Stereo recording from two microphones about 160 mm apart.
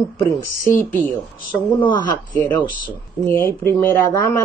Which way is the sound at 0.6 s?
20° left (ahead or behind).